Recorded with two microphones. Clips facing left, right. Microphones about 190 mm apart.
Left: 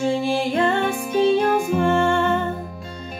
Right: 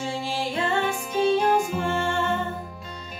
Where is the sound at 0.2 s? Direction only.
55° left (ahead or behind).